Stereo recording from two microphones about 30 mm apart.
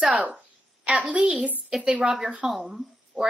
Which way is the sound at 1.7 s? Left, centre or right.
Centre.